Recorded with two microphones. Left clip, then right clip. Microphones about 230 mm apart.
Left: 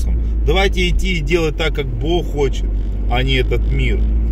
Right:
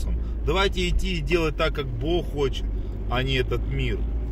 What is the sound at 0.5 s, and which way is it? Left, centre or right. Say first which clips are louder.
Speech: left 7 dB; right.